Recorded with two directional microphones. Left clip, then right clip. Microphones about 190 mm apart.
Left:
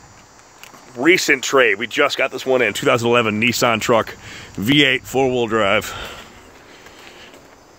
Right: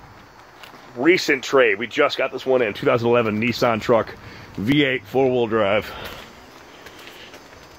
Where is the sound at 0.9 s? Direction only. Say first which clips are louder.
Left 3 dB; 40° left (ahead or behind).